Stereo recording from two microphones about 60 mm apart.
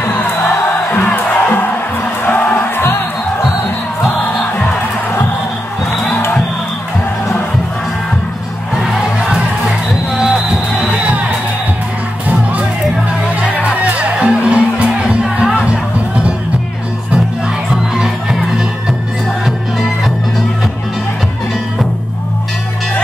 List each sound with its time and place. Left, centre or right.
0.8 s music: left
10.1 s music: centre
13.6 s music: right
17.9 s music: centre